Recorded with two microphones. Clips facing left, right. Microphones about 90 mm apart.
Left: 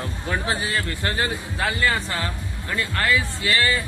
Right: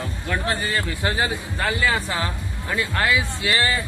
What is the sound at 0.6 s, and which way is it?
Speech, centre (ahead or behind).